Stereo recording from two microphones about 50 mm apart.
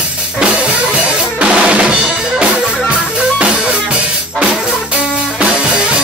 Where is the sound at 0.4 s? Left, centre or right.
Right.